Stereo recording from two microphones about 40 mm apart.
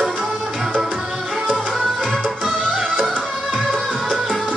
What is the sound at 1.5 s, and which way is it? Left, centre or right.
Tabla, centre.